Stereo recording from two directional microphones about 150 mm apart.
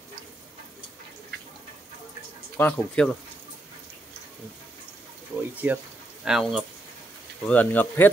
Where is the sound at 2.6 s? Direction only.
10° left (ahead or behind).